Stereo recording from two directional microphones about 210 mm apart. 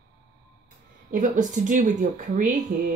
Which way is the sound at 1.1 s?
35° right (ahead or behind).